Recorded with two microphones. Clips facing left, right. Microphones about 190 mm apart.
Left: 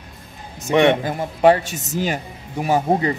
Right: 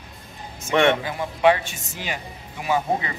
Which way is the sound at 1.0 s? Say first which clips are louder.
Left 4 dB; 45° left (ahead or behind).